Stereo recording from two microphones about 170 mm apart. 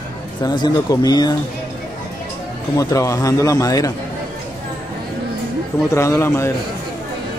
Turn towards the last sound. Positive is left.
turn(degrees=15)  # may be behind; listen again after turning